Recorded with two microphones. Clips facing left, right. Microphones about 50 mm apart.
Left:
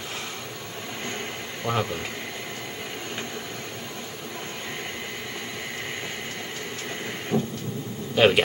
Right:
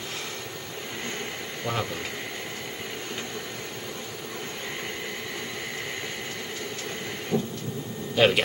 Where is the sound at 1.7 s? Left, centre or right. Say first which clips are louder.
Left 4 dB; centre.